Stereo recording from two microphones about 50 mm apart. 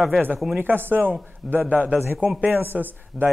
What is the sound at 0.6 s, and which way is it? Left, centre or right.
Speech, right.